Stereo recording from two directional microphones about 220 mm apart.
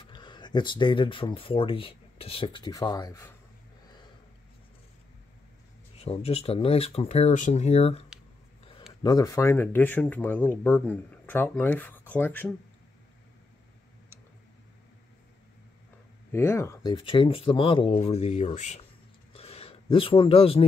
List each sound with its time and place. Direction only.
0.0 s speech: 20° left (ahead or behind)
5.9 s speech: 25° left (ahead or behind)
9.0 s speech: 15° left (ahead or behind)
16.3 s speech: 10° left (ahead or behind); by 18.8 s 30° left (ahead or behind)
19.3 s a sound: 25° left (ahead or behind)